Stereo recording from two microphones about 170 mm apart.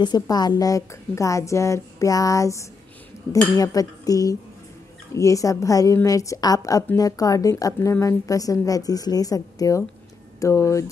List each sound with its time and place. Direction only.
0.0 s a woman's voice: 25° left (ahead or behind)